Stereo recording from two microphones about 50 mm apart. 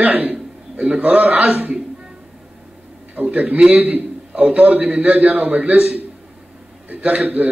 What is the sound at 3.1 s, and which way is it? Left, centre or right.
A man's voice, right.